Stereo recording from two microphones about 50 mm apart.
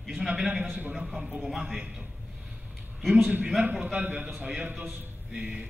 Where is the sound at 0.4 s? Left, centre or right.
Right.